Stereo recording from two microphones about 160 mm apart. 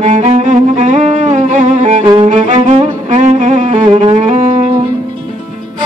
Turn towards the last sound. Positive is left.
turn(degrees=-35)  # may be behind; listen again after turning